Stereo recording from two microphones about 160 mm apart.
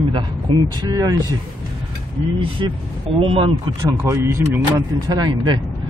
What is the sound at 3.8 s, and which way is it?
Speech, 20° right (ahead or behind).